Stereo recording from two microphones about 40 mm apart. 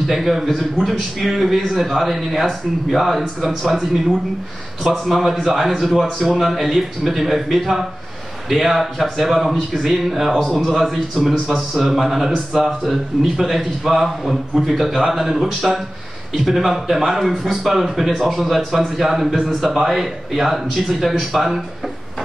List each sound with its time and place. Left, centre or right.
0.0 s a man's voice: centre
3.7 s speech: centre
4.8 s speech: centre
11.1 s speech: centre
11.7 s a man's voice: centre
19.3 s speech: centre
19.7 s speech: centre